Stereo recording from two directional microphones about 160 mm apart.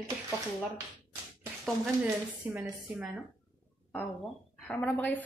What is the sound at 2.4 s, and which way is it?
Speech, 10° right (ahead or behind).